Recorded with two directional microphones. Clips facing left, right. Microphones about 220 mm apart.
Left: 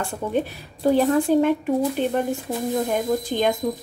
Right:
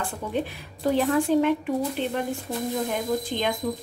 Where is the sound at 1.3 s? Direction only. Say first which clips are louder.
Left 3 dB; 40° left (ahead or behind).